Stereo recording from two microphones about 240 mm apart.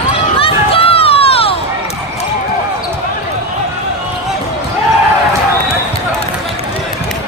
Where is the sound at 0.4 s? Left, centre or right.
Left.